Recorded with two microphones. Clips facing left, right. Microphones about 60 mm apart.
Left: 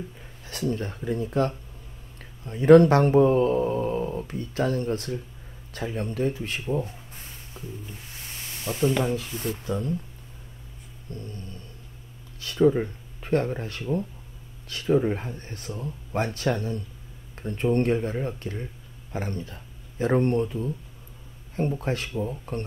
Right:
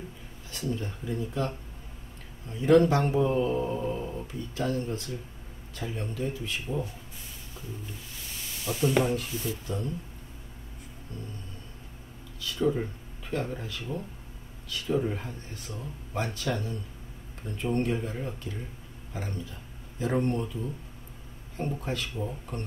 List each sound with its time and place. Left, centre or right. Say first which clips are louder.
0.5 s speech: left 5 dB; left
6.7 s a sound: left 5 dB; left
9.3 s speech: left 4 dB; left
11.1 s speech: left 4 dB; left
12.4 s speech: left 7 dB; left
15.3 s speech: left 4 dB; left
21.7 s speech: left 5 dB; left